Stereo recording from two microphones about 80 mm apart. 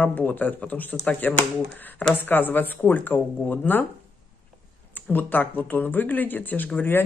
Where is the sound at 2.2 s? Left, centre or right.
Left.